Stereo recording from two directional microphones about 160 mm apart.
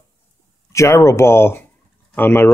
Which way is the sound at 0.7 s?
20° left (ahead or behind).